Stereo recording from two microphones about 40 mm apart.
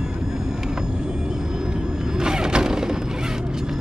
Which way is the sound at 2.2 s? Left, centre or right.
Centre.